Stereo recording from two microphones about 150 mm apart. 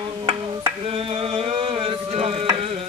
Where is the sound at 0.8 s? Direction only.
35° right (ahead or behind).